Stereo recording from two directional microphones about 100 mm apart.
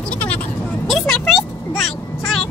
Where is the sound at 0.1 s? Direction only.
15° left (ahead or behind).